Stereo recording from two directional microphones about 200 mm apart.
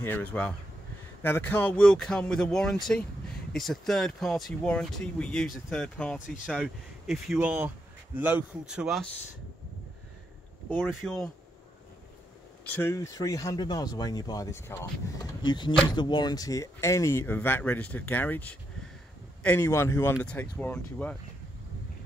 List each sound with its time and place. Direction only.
0.0 s speech: 10° left (ahead or behind)
10.8 s speech: centre (ahead or behind)
12.6 s speech: 10° left (ahead or behind)